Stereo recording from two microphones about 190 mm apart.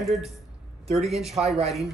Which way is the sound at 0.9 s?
35° right (ahead or behind).